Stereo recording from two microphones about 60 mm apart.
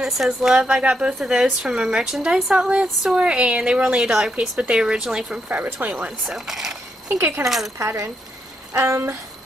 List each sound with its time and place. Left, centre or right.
0.0 s a woman's voice: centre
5.8 s speech: right
6.2 s a woman's voice: centre
7.2 s speech: right
7.4 s speech: centre
7.8 s speech: right
8.7 s a sound: right